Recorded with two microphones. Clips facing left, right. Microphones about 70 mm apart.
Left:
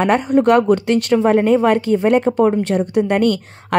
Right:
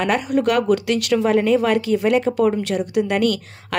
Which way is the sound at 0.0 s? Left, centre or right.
Left.